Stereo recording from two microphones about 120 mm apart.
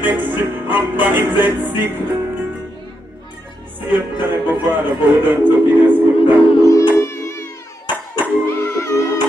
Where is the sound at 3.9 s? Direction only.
15° right (ahead or behind).